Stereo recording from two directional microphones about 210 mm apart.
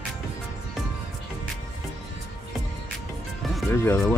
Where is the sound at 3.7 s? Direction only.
10° left (ahead or behind).